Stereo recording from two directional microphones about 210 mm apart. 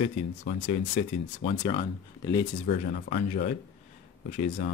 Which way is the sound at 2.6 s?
40° left (ahead or behind).